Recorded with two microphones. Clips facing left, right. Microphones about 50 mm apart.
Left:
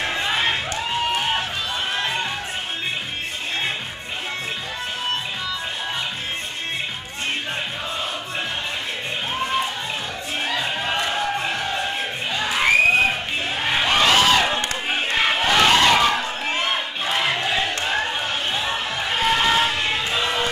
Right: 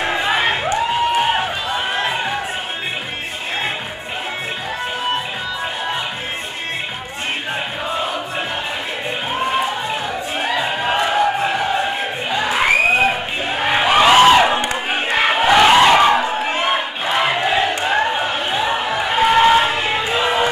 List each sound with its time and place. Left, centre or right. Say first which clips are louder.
0.0 s music: right 5 dB; centre
9.3 s music: right 5 dB; centre